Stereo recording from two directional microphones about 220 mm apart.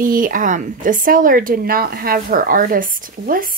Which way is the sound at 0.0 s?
40° right (ahead or behind).